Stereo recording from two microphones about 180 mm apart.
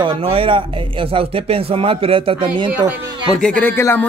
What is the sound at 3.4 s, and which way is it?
Speech, 10° left (ahead or behind).